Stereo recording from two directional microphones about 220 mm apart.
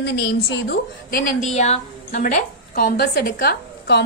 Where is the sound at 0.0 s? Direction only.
45° left (ahead or behind).